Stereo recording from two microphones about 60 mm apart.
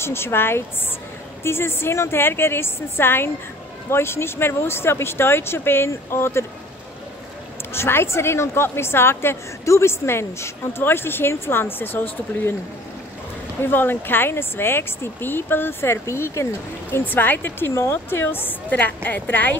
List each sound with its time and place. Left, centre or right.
0.0 s a woman's voice: left
7.7 s a woman's voice: left
13.6 s speech: left
16.9 s speech: left